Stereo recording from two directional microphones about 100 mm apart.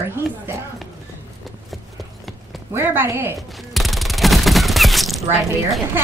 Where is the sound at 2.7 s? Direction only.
25° right (ahead or behind).